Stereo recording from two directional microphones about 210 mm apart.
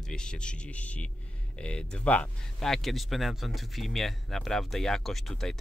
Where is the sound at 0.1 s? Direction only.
5° left (ahead or behind).